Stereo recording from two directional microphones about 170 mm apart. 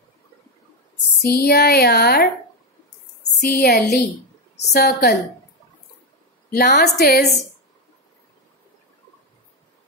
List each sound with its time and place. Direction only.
1.2 s speech: 70° left (ahead or behind)
3.3 s speech: 70° left (ahead or behind)
6.5 s speech: 70° left (ahead or behind)